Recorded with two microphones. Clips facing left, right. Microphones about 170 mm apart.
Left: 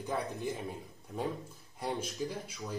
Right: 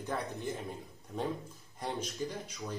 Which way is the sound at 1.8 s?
10° left (ahead or behind).